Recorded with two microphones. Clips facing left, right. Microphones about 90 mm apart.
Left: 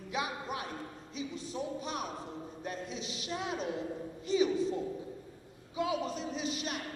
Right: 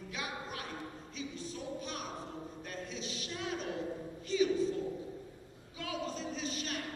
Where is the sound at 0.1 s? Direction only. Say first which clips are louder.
Left 6 dB; 20° left (ahead or behind).